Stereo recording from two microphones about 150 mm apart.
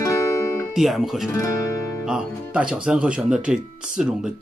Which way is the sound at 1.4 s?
20° left (ahead or behind).